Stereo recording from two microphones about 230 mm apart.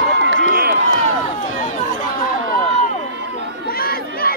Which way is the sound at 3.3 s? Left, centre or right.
Left.